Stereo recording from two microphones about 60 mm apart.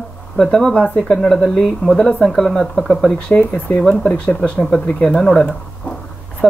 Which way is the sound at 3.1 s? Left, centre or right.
Left.